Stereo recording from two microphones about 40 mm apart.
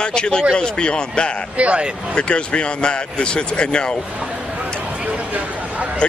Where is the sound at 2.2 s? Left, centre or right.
Left.